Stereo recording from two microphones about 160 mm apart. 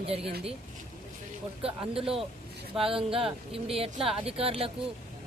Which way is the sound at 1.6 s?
35° right (ahead or behind).